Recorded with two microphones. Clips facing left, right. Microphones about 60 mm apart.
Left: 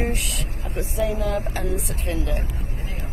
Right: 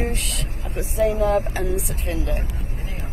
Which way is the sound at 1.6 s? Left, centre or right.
Centre.